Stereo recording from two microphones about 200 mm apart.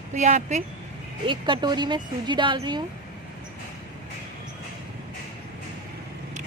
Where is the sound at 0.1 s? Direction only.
35° right (ahead or behind).